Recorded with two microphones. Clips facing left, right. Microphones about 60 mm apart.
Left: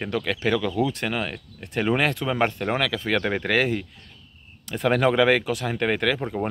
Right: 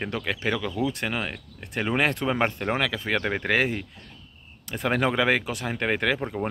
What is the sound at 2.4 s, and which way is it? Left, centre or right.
Speech, centre.